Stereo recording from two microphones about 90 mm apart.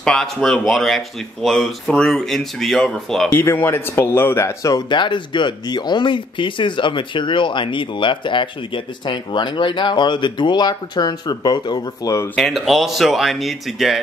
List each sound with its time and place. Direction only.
0.0 s speech: 5° left (ahead or behind)
3.3 s speech: 25° left (ahead or behind)
4.6 s speech: 50° left (ahead or behind)
12.4 s speech: centre (ahead or behind)